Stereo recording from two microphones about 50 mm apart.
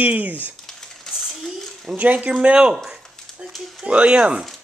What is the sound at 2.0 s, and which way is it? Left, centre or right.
Speech, right.